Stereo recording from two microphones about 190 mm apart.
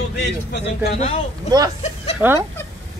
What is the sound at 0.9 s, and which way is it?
Speech, 35° left (ahead or behind).